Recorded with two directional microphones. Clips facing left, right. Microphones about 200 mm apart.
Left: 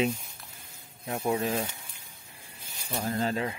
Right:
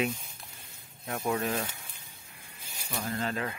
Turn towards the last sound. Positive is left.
turn(degrees=30)  # may be behind; listen again after turning